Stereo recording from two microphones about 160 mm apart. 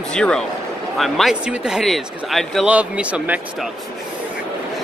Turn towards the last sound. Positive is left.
turn(degrees=-10)  # may be behind; listen again after turning